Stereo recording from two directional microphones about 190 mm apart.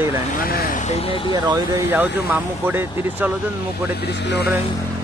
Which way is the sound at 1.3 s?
20° right (ahead or behind).